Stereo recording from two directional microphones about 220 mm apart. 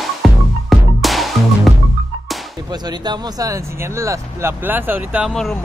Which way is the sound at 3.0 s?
20° right (ahead or behind).